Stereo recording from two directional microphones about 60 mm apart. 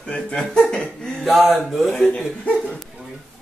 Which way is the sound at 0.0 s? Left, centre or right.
Centre.